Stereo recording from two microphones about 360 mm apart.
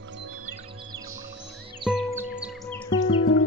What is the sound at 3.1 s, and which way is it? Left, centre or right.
Music, left.